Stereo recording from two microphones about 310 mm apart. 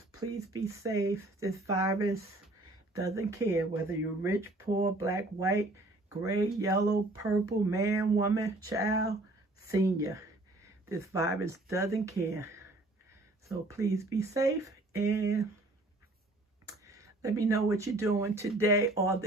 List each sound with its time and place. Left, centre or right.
0.5 s speech: centre
16.6 s speech: centre